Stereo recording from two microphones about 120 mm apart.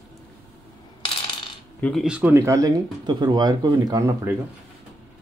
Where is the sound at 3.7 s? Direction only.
25° right (ahead or behind).